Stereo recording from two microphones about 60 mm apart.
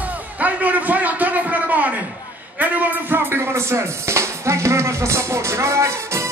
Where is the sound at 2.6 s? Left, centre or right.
Right.